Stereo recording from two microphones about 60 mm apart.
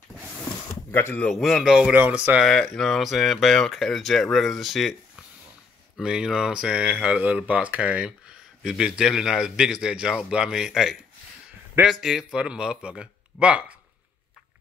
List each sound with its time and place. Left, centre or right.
0.9 s speech: left
1.3 s speech: centre
2.4 s speech: centre
3.0 s speech: centre